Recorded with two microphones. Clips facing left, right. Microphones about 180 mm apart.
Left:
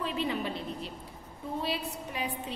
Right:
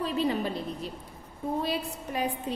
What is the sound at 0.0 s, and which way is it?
A woman's voice, 40° right (ahead or behind).